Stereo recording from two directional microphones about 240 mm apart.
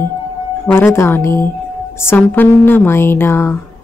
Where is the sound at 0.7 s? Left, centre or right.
Centre.